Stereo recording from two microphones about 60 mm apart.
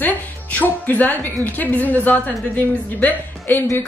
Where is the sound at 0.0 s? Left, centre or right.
Left.